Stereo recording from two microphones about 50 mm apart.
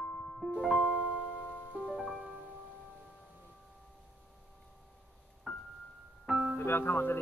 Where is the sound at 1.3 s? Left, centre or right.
Left.